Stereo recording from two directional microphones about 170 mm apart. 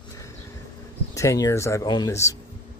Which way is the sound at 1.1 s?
20° left (ahead or behind).